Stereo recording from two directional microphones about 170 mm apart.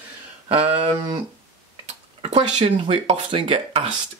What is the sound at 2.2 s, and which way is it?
Speech, 40° right (ahead or behind).